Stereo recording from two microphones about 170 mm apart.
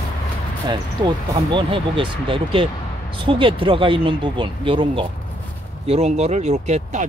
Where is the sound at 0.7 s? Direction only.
25° right (ahead or behind).